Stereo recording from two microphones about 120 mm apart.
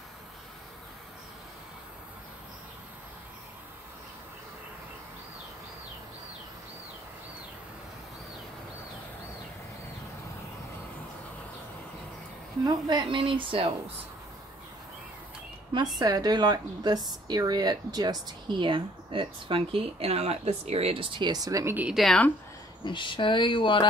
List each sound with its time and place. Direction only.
12.6 s speech: 35° right (ahead or behind)
16.0 s a woman's voice: 30° right (ahead or behind)
21.7 s speech: 10° right (ahead or behind)
22.0 s speech: 10° left (ahead or behind)
22.8 s speech: 40° left (ahead or behind)